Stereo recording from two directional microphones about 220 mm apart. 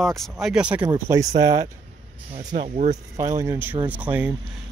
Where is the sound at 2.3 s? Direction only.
30° right (ahead or behind).